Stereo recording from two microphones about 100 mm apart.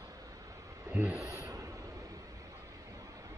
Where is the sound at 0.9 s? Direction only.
15° right (ahead or behind).